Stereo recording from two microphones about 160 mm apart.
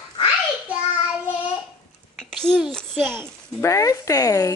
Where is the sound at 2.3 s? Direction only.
5° left (ahead or behind).